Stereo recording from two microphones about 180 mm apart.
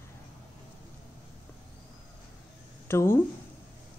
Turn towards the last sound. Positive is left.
turn(degrees=15)  # may be behind; listen again after turning